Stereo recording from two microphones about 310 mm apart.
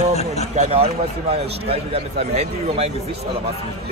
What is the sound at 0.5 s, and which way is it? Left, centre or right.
Speech, centre.